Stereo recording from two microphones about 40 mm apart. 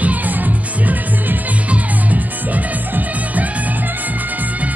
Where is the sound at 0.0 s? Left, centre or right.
Right.